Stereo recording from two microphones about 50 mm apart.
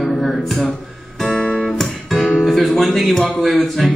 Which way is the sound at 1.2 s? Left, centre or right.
Centre.